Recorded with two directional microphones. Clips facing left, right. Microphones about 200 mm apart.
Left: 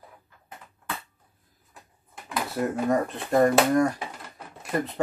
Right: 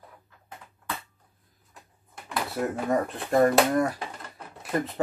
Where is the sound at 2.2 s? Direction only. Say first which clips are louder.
Left 1 dB; centre (ahead or behind).